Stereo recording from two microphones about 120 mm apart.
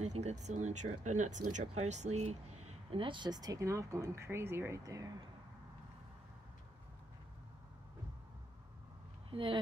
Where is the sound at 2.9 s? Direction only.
45° right (ahead or behind); by 5.1 s 30° right (ahead or behind).